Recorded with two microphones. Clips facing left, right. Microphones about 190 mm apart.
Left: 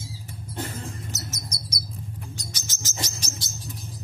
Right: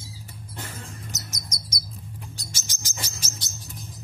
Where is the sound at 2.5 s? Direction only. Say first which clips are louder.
Left 2 dB; 20° right (ahead or behind).